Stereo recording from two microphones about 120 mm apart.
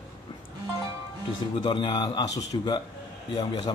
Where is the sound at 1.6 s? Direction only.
40° left (ahead or behind).